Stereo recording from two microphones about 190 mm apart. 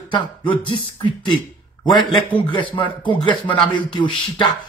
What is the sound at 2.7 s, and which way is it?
Speech, 25° left (ahead or behind).